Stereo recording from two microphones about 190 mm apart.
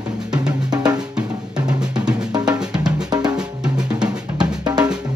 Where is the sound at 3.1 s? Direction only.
20° right (ahead or behind).